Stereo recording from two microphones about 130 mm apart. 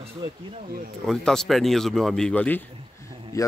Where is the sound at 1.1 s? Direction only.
5° left (ahead or behind).